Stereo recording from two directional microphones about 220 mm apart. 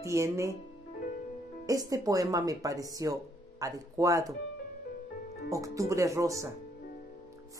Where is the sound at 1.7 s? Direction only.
15° right (ahead or behind).